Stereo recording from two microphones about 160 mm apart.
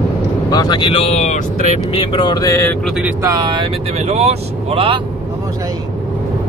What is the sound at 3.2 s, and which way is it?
Speech, 25° right (ahead or behind).